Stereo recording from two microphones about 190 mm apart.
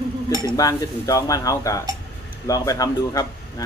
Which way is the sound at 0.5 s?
20° left (ahead or behind).